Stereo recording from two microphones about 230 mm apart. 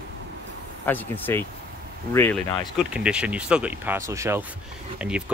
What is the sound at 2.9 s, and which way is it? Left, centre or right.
Speech, centre.